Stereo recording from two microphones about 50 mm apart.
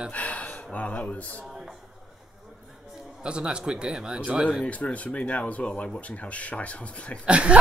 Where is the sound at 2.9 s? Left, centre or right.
Centre.